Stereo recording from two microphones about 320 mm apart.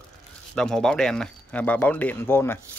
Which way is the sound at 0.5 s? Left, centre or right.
Centre.